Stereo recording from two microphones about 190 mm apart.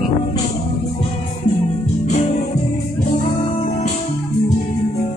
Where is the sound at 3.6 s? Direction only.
40° left (ahead or behind).